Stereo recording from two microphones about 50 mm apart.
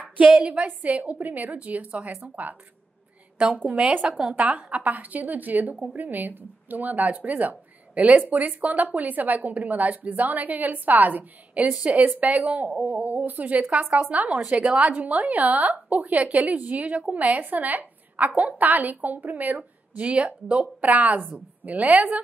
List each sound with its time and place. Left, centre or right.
0.3 s a woman's voice: right
3.9 s a woman's voice: right
20.1 s a woman's voice: right